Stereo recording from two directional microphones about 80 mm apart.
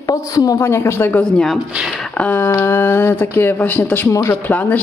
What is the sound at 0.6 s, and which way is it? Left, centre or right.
Speech, left.